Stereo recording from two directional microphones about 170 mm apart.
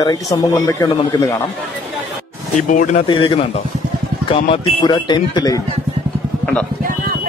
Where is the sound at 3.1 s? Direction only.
30° left (ahead or behind).